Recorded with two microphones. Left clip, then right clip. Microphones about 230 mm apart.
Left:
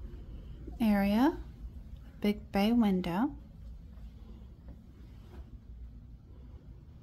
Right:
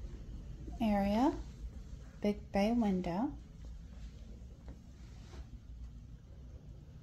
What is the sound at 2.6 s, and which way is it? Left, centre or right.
Speech, left.